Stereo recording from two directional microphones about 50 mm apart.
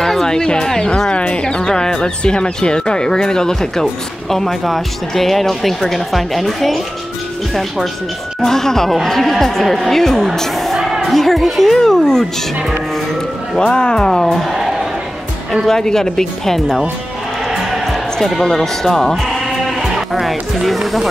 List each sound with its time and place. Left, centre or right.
0.0 s a woman's voice: centre
8.4 s speech: centre
14.2 s speech: centre
15.5 s speech: centre
17.5 s music: centre
18.2 s speech: centre
19.8 s speech: centre